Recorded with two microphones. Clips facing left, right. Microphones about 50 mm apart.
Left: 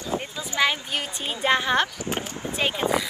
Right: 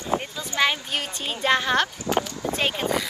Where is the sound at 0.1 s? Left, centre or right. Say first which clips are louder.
Right 4 dB; right.